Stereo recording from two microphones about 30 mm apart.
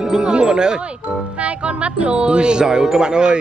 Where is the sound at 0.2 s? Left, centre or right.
Right.